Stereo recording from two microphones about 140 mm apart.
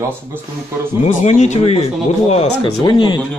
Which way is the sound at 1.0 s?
55° left (ahead or behind).